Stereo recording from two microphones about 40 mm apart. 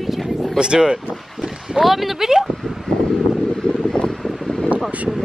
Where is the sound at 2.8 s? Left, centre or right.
Centre.